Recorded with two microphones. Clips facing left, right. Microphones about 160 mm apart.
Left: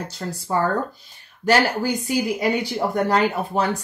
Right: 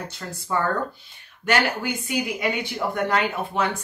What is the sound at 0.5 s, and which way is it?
Speech, 35° left (ahead or behind).